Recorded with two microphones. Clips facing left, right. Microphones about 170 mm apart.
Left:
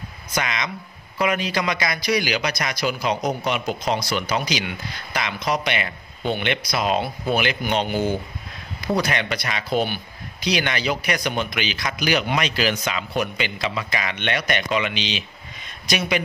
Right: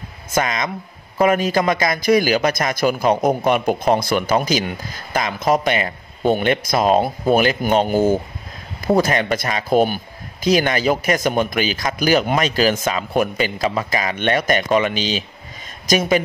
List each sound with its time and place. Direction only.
0.3 s a man's voice: 45° right (ahead or behind)